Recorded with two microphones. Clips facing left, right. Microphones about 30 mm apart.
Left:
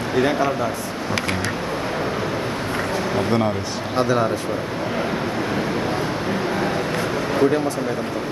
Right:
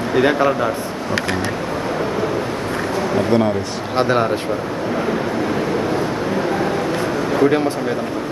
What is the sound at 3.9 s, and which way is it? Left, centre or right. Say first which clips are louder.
Speech: right 3 dB; right.